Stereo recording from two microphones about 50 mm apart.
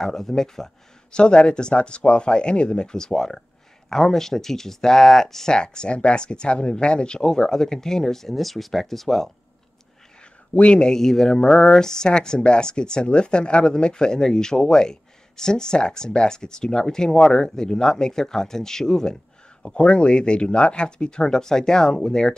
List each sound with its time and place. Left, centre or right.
0.0 s speech: centre
1.1 s speech: centre
10.5 s speech: left
10.9 s speech: centre